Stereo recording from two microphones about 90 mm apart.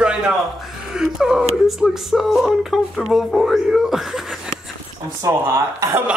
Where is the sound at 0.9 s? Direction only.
5° right (ahead or behind).